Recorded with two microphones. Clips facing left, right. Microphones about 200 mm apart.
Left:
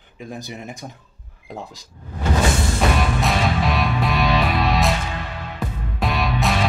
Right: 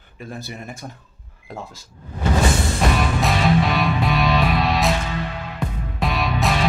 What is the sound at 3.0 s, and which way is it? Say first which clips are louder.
Music: even; centre (ahead or behind).